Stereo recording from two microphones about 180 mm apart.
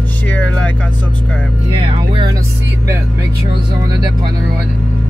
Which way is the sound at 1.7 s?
30° right (ahead or behind).